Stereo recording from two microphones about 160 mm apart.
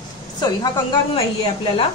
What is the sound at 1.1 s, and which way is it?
Speech, 35° left (ahead or behind).